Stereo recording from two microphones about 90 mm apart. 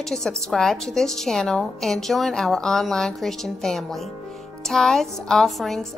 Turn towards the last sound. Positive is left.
turn(degrees=0)  # may be behind; listen again after turning